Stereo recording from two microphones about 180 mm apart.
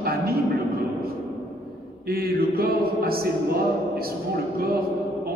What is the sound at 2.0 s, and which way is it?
Mantra, 55° right (ahead or behind).